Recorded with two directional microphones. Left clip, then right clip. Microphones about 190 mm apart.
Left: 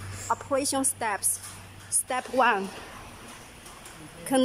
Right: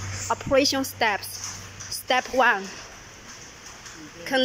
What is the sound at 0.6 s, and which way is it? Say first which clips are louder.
Speech: right 7 dB; 5° left (ahead or behind).